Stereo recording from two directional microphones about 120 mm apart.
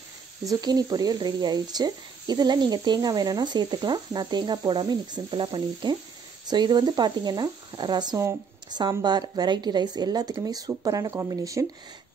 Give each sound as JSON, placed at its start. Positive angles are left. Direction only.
{"t": 0.5, "sound": "speech", "side_deg": -35}